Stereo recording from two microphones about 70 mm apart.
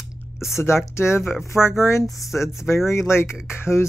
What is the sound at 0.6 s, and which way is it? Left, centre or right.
Speech, left.